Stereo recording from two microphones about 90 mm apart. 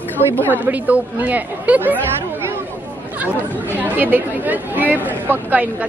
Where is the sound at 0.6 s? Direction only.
20° right (ahead or behind).